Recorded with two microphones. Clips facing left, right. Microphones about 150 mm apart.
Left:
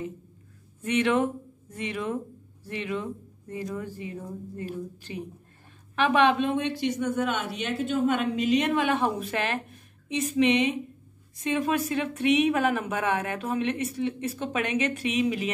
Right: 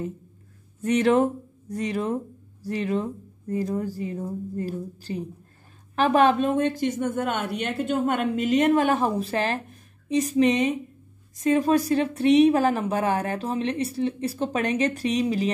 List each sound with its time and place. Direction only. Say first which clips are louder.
0.8 s a woman's voice: right 4 dB; 40° right (ahead or behind)